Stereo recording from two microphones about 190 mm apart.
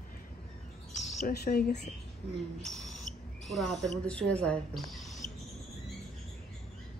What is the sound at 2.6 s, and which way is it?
Owl, centre (ahead or behind).